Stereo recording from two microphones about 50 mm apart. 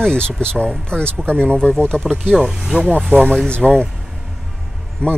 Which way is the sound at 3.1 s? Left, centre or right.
Centre.